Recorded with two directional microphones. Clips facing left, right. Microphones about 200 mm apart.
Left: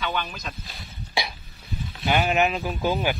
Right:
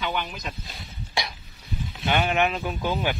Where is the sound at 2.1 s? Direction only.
5° left (ahead or behind).